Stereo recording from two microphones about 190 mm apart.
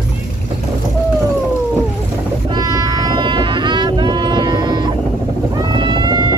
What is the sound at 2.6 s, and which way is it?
Whale vocalization, 20° right (ahead or behind).